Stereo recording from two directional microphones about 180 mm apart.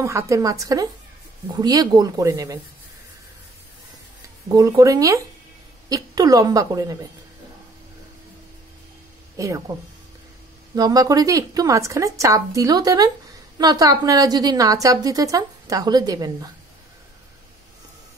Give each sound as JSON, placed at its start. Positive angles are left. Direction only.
{"t": 0.0, "sound": "a woman's voice", "side_deg": -15}
{"t": 4.5, "sound": "a woman's voice", "side_deg": -20}
{"t": 9.4, "sound": "a woman's voice", "side_deg": -20}
{"t": 10.7, "sound": "a woman's voice", "side_deg": -20}